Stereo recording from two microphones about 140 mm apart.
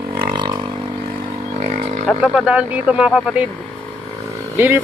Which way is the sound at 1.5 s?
50° right (ahead or behind).